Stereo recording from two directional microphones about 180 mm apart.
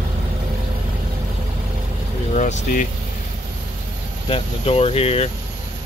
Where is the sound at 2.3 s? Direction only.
40° left (ahead or behind).